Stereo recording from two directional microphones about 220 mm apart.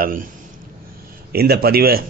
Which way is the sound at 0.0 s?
40° right (ahead or behind).